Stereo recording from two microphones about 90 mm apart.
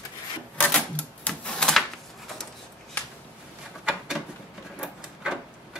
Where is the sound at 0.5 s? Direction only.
20° left (ahead or behind).